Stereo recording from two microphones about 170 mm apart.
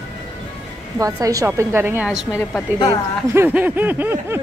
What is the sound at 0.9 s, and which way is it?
Speech, 20° right (ahead or behind).